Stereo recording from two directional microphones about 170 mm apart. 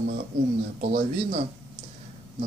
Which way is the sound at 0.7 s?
45° right (ahead or behind).